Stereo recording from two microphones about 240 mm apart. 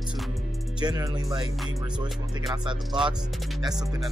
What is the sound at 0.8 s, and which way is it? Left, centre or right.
Speech, centre.